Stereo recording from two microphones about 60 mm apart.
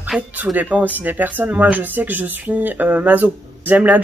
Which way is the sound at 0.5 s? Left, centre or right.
Right.